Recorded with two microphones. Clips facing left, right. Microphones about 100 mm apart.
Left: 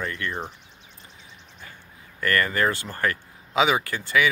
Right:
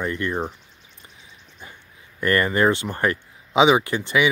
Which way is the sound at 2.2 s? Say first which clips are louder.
Right 4 dB; 20° right (ahead or behind).